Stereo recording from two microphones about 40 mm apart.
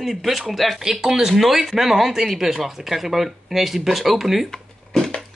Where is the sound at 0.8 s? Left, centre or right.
Centre.